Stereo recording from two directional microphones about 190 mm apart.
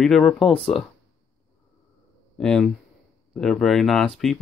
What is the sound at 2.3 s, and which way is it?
Speech, 5° left (ahead or behind).